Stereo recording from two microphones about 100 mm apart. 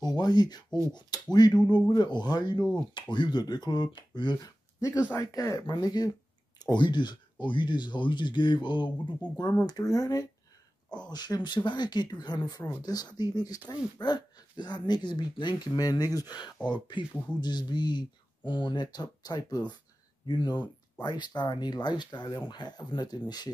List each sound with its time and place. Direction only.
0.0 s speech: 45° left (ahead or behind)
4.7 s speech: 30° left (ahead or behind)